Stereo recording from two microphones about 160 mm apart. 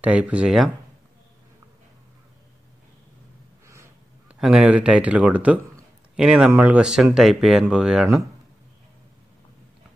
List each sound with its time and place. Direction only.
0.0 s speech: 10° right (ahead or behind)
3.6 s a sound: 15° right (ahead or behind)
4.4 s speech: 5° right (ahead or behind)